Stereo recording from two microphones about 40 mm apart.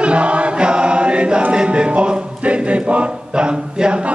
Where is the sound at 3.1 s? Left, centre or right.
Right.